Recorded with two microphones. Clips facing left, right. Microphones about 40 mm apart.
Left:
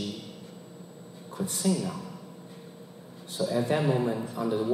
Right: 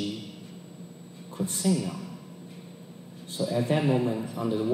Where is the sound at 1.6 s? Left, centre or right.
Centre.